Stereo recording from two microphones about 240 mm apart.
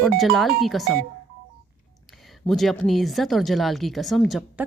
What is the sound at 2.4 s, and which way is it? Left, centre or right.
A woman's voice, centre.